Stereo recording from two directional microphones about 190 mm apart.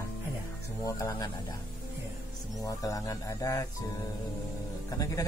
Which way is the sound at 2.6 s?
20° left (ahead or behind).